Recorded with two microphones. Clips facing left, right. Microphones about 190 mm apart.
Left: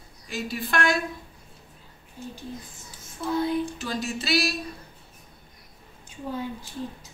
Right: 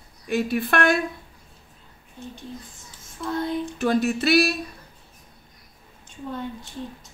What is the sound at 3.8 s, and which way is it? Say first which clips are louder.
Speech: right 9 dB; 55° right (ahead or behind).